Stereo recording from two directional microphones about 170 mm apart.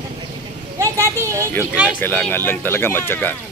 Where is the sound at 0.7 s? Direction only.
20° right (ahead or behind).